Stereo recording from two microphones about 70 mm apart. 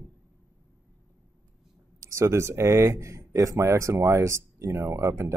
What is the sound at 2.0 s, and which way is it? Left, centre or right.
Speech, right.